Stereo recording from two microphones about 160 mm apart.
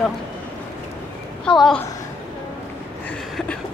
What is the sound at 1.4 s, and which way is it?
Speech, 5° left (ahead or behind).